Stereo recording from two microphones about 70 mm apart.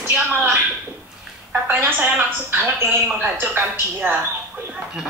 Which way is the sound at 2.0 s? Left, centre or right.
Right.